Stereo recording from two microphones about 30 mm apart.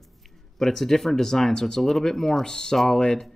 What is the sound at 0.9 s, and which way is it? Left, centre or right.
Speech, centre.